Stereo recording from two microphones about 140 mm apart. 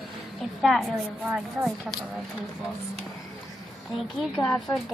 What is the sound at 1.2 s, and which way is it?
Speech, centre (ahead or behind).